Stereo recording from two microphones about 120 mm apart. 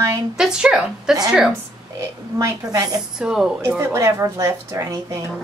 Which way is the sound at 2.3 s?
30° right (ahead or behind).